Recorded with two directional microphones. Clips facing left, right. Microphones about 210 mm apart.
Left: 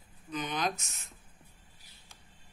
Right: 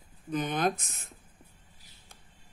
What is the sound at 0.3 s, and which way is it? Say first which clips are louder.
Speech: right 5 dB; 55° right (ahead or behind).